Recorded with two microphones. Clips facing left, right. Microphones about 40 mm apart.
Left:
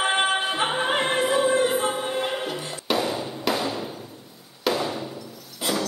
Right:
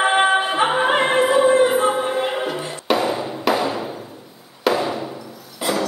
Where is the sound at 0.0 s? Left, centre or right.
Centre.